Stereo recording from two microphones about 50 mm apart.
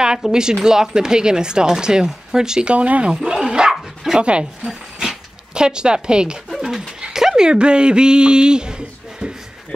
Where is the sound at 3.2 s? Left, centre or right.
Centre.